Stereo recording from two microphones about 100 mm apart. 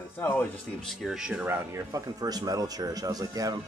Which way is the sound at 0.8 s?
Centre (ahead or behind).